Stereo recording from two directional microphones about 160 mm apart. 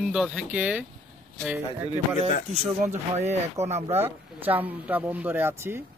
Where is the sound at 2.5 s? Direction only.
45° right (ahead or behind).